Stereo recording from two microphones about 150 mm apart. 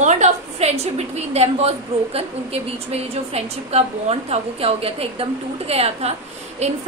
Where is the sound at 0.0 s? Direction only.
50° right (ahead or behind).